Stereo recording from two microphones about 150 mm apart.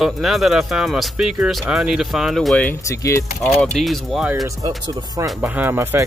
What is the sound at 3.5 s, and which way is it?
Speech, centre (ahead or behind).